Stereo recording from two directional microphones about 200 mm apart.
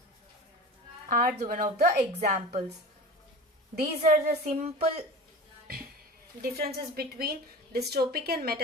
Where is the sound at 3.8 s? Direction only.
45° right (ahead or behind).